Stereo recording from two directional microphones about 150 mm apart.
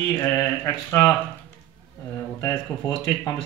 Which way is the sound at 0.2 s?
20° left (ahead or behind).